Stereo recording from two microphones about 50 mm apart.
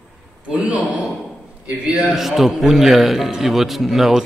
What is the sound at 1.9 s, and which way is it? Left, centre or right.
A man's voice, centre.